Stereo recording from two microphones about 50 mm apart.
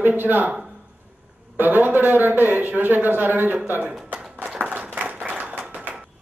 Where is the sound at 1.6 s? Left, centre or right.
Right.